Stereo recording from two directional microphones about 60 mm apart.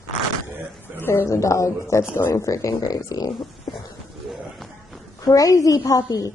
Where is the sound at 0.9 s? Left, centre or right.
Left.